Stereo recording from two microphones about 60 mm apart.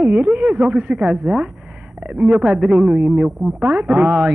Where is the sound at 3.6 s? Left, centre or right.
Right.